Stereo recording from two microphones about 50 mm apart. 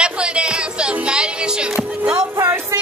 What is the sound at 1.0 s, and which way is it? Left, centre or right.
Music, centre.